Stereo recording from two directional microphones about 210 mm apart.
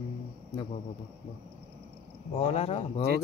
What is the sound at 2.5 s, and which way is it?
Speech, 30° left (ahead or behind).